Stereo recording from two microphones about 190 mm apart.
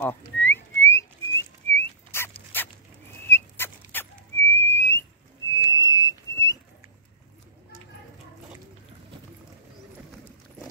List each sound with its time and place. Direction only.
0.0 s whistling: 10° left (ahead or behind)
1.7 s dog: 10° left (ahead or behind)
3.3 s whistling: 10° left (ahead or behind)
5.5 s whistle: 15° left (ahead or behind)